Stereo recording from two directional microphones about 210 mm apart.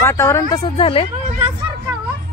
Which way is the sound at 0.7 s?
25° left (ahead or behind).